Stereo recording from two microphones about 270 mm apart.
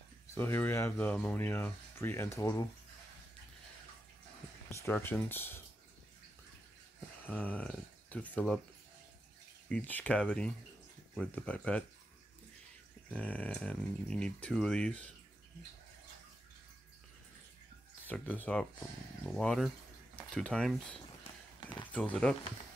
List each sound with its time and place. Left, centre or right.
0.3 s speech: centre
4.6 s speech: centre
7.2 s speech: centre
9.7 s speech: centre
13.1 s speech: centre
18.0 s speech: centre
21.5 s a sound: centre
21.9 s speech: centre